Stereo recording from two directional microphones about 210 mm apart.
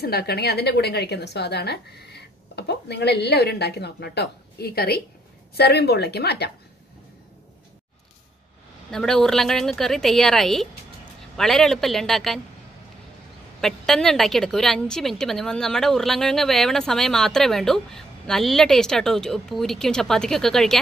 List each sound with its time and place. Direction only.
0.0 s a woman's voice: 50° left (ahead or behind)
8.9 s a woman's voice: centre (ahead or behind)
13.6 s a woman's voice: centre (ahead or behind)